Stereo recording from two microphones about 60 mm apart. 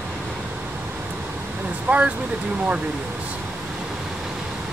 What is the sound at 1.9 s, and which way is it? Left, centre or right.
Speech, right.